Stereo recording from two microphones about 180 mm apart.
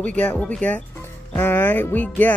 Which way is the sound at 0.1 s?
5° left (ahead or behind).